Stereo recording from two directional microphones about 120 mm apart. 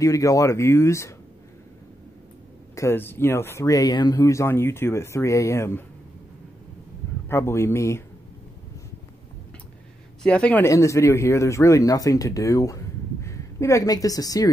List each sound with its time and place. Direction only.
0.0 s speech: 30° left (ahead or behind)
2.7 s speech: 25° left (ahead or behind)
7.2 s speech: 20° left (ahead or behind)
10.2 s speech: 10° left (ahead or behind)
10.6 s speech: 25° left (ahead or behind)